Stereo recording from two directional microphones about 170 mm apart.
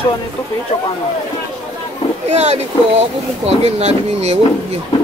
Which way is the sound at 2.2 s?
40° right (ahead or behind).